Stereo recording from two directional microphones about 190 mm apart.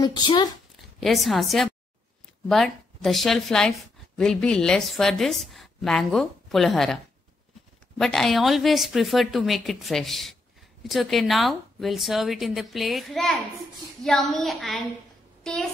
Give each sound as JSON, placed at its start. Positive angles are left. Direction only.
{"t": 0.0, "sound": "speech", "side_deg": 25}
{"t": 0.7, "sound": "a woman's voice", "side_deg": 0}
{"t": 8.0, "sound": "a woman's voice", "side_deg": 0}